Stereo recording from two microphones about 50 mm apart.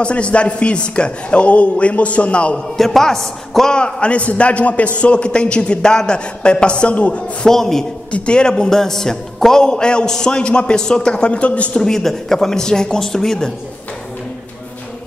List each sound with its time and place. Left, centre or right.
0.0 s a man's voice: left
2.8 s a man's voice: centre
3.7 s a man's voice: left
7.4 s a man's voice: centre
8.1 s a man's voice: centre
11.8 s a man's voice: centre